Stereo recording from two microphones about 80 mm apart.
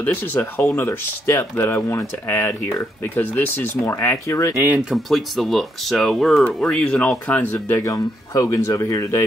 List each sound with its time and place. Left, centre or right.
0.0 s speech: left
3.0 s speech: left
4.6 s speech: right
4.8 s speech: centre
7.8 s speech: left